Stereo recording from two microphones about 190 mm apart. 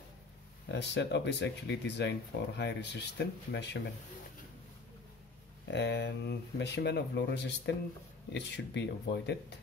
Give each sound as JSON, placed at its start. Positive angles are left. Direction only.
{"t": 0.7, "sound": "speech", "side_deg": 65}
{"t": 5.7, "sound": "speech", "side_deg": 65}